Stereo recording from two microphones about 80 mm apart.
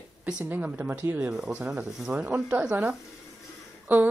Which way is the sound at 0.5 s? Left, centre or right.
Right.